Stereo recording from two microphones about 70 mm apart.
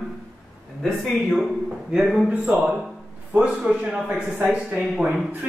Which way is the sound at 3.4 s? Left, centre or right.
Centre.